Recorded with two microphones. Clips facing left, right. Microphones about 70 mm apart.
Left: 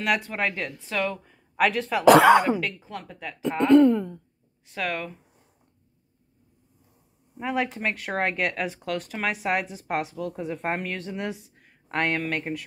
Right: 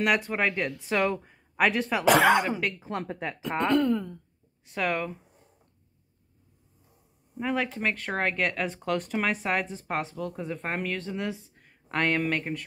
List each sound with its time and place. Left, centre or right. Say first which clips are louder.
0.0 s speech: right 1 dB; centre
0.8 s a woman's voice: right 2 dB; right
1.6 s speech: left 1 dB; centre
2.8 s a woman's voice: right 4 dB; right
3.6 s speech: left 8 dB; left
4.6 s speech: right 2 dB; centre
7.3 s speech: left 1 dB; centre
11.6 s speech: left 1 dB; centre